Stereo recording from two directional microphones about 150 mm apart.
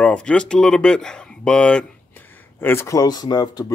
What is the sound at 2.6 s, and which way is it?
Speech, 15° left (ahead or behind).